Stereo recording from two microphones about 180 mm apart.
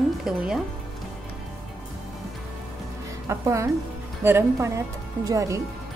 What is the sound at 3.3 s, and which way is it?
A woman's voice, 15° right (ahead or behind).